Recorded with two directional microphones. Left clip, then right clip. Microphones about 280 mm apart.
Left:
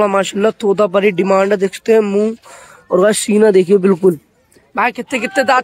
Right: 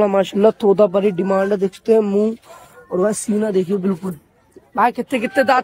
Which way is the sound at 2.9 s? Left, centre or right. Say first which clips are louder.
Left 7 dB; left.